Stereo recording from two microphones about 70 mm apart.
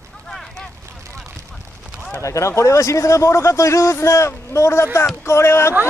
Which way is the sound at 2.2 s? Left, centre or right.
Left.